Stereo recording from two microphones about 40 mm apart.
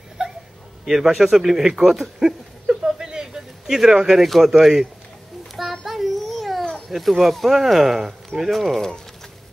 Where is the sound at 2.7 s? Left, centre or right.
Centre.